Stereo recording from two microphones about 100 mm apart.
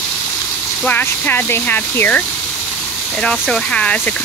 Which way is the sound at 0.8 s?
15° left (ahead or behind).